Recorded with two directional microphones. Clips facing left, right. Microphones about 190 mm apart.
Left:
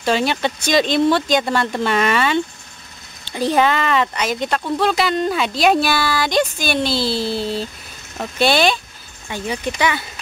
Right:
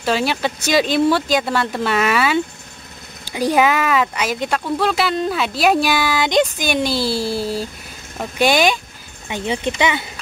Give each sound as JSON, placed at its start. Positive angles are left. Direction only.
{"t": 0.0, "sound": "speech", "side_deg": -5}